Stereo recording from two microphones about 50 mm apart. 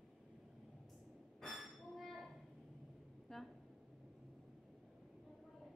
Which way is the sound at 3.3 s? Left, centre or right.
Centre.